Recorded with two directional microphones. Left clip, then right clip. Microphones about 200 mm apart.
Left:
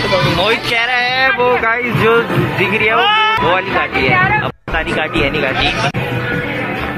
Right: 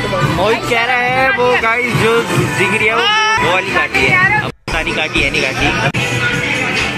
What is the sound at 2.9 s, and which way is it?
Speech, 35° left (ahead or behind).